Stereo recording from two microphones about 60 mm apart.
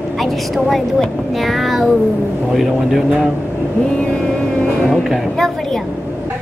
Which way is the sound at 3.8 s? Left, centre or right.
Centre.